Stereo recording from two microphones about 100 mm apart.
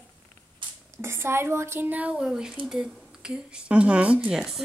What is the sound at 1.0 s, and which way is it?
A woman's voice, 25° right (ahead or behind).